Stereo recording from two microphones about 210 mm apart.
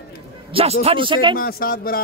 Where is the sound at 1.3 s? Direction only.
45° left (ahead or behind).